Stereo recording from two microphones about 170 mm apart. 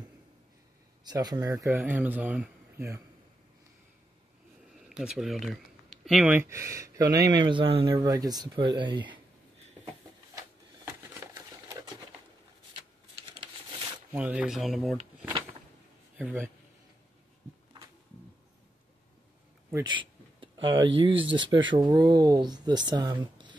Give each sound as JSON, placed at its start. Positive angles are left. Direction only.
{"t": 1.0, "sound": "speech", "side_deg": -20}
{"t": 4.8, "sound": "speech", "side_deg": 0}
{"t": 11.2, "sound": "a sound", "side_deg": -20}
{"t": 14.1, "sound": "speech", "side_deg": -5}
{"t": 16.2, "sound": "speech", "side_deg": -10}
{"t": 19.7, "sound": "a sound", "side_deg": -25}
{"t": 20.6, "sound": "speech", "side_deg": -30}